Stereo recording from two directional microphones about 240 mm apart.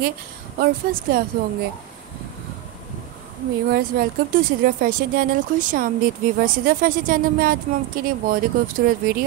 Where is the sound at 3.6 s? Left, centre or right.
Right.